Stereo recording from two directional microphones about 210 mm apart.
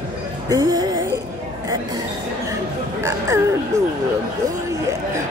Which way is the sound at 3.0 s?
15° right (ahead or behind).